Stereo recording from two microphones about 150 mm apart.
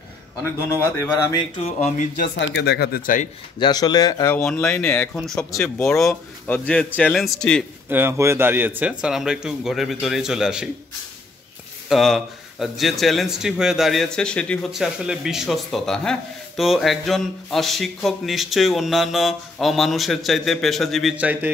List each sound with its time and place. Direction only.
0.4 s speech: 15° left (ahead or behind)
1.6 s speech: 45° left (ahead or behind)
2.6 s speech: 90° left; by 3.3 s 65° left (ahead or behind)
3.5 s speech: 30° left (ahead or behind)
4.5 s speech: 5° left (ahead or behind)
5.5 s speech: 20° left (ahead or behind)
7.9 s speech: 15° right (ahead or behind)
11.9 s speech: centre (ahead or behind)
21.2 s speech: 10° right (ahead or behind)